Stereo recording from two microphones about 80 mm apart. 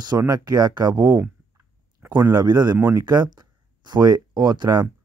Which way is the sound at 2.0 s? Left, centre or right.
Right.